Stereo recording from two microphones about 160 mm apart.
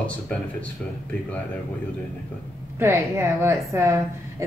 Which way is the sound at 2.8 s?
15° right (ahead or behind).